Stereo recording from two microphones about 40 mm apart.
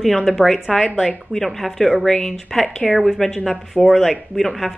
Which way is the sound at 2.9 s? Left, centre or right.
Centre.